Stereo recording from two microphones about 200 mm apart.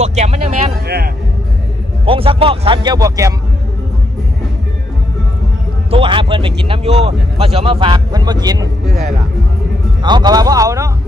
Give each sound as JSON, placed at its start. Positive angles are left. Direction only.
{"t": 0.0, "sound": "vehicle", "side_deg": -35}
{"t": 0.8, "sound": "music", "side_deg": -55}
{"t": 2.0, "sound": "speech", "side_deg": -25}
{"t": 5.9, "sound": "speech", "side_deg": -25}
{"t": 10.0, "sound": "speech", "side_deg": -20}